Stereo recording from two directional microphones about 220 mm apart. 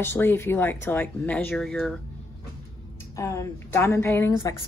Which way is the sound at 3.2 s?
10° left (ahead or behind).